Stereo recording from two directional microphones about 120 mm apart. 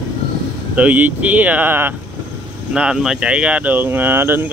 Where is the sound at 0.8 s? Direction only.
15° right (ahead or behind).